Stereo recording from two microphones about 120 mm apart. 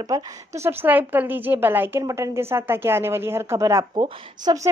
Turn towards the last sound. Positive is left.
turn(degrees=-35)  # may be behind; listen again after turning